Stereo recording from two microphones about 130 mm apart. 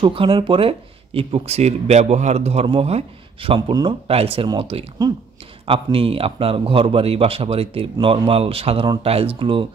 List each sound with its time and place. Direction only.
0.0 s speech: 45° right (ahead or behind)
4.1 s speech: 50° right (ahead or behind)